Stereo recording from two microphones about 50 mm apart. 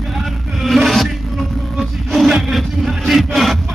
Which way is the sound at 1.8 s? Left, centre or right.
Centre.